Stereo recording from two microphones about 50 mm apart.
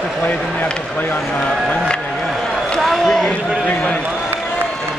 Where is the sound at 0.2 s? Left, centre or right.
Left.